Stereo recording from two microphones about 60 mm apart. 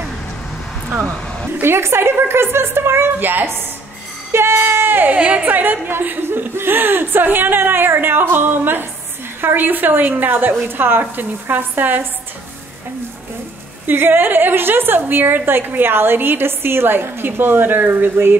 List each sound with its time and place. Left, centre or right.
1.6 s a woman's voice: right
4.3 s a sound: right
5.1 s a woman's voice: right
13.8 s a woman's voice: right